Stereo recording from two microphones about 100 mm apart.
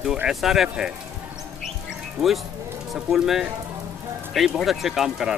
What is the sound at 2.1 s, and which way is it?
Speech, centre (ahead or behind).